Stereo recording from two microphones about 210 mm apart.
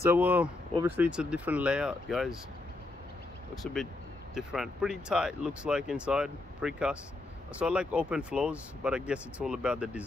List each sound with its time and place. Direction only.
0.0 s speech: 10° right (ahead or behind)
4.4 s speech: centre (ahead or behind)